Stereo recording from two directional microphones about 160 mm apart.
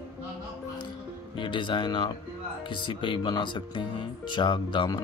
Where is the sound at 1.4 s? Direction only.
30° left (ahead or behind).